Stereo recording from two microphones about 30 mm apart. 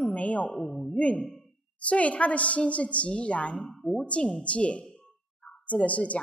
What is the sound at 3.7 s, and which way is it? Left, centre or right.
Speech, centre.